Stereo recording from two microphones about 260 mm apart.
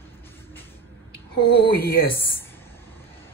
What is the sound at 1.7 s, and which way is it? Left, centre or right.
Speech, left.